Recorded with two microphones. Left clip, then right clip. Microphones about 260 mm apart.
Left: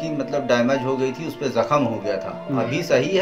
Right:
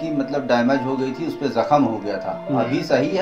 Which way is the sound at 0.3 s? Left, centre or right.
Left.